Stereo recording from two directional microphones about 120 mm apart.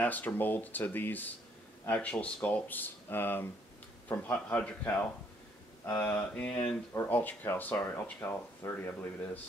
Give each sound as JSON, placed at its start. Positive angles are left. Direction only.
{"t": 0.0, "sound": "speech", "side_deg": 15}